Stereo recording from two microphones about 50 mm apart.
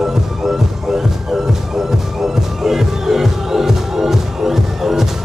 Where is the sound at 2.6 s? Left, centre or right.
Centre.